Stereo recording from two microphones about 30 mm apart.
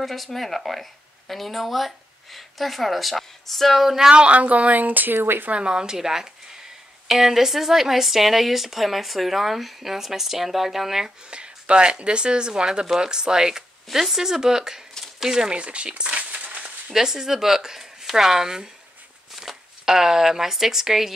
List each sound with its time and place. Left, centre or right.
0.0 s speech: centre
3.8 s speech: centre
4.3 s a woman's voice: right
4.7 s speech: right
5.5 s speech: right
5.9 s speech: centre
11.2 s speech: right
15.5 s speech: right
16.3 s a sound: right
16.9 s speech: centre
19.4 s a sound: centre
19.8 s speech: centre